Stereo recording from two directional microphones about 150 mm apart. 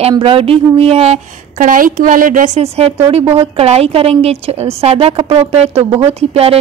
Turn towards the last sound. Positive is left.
turn(degrees=-40)  # may be behind; listen again after turning